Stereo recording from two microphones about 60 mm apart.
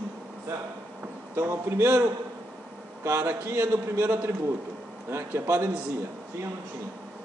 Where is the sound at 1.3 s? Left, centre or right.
Right.